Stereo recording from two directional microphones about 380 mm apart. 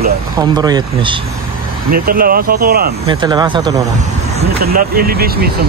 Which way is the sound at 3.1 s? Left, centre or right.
Centre.